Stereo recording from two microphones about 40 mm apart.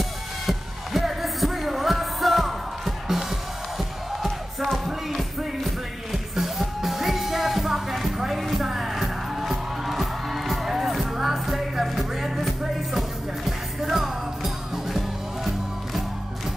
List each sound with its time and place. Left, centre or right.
0.5 s music: centre